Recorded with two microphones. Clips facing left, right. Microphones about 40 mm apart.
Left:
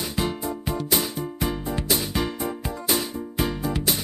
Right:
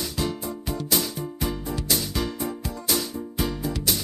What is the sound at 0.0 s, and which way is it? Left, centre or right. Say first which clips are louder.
Music: left 2 dB; left.